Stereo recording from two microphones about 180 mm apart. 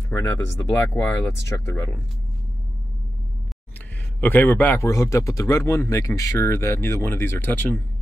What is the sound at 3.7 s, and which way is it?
Speech, 10° left (ahead or behind).